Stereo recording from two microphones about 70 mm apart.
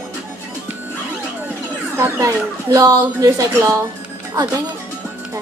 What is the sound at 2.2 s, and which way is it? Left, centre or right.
Speech, right.